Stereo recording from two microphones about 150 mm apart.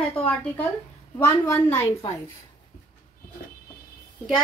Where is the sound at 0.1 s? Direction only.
10° left (ahead or behind).